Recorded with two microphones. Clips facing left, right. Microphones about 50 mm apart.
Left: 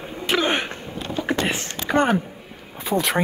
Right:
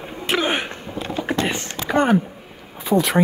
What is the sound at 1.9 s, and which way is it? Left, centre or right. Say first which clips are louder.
Speech: right 2 dB; left.